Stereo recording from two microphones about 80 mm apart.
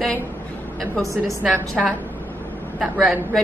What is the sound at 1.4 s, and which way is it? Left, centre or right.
A woman's voice, centre.